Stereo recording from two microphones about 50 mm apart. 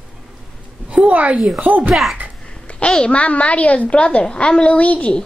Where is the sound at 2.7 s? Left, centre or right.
Left.